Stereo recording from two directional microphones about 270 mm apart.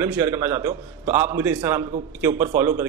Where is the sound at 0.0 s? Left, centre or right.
Centre.